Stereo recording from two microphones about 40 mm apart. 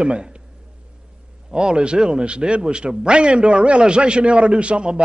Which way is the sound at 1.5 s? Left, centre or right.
Right.